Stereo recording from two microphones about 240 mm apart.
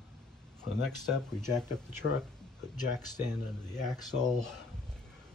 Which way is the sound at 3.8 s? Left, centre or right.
Centre.